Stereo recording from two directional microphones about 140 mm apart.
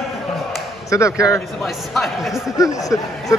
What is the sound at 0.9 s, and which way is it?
Speech, 20° left (ahead or behind).